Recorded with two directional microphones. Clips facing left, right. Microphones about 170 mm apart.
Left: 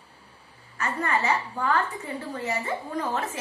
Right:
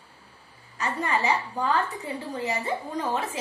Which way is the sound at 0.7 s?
15° right (ahead or behind).